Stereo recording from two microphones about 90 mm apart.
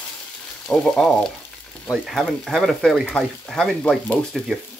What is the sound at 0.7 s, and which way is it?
Speech, 5° left (ahead or behind).